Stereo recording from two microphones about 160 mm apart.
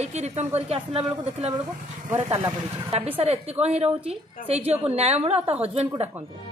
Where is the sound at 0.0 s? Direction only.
45° right (ahead or behind).